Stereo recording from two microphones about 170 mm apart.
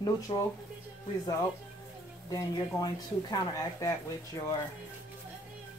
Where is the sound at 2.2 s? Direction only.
20° left (ahead or behind).